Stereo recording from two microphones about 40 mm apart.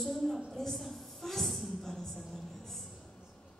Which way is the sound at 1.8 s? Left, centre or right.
Centre.